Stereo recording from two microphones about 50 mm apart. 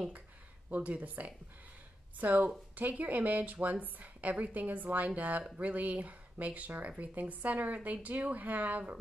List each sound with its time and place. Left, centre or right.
0.7 s a woman's voice: right